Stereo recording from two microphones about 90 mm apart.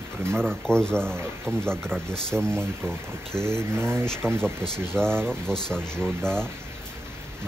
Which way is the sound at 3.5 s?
30° right (ahead or behind).